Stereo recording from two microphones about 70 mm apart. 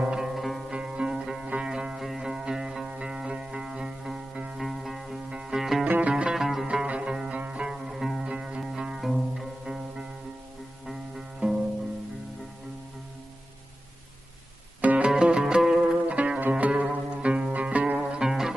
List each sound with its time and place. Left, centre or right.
0.0 s music: centre
0.3 s music: centre
0.7 s music: centre
5.9 s music: centre
14.8 s music: centre